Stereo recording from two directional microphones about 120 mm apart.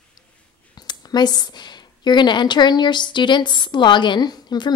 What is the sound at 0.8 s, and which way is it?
A woman's voice, 35° left (ahead or behind).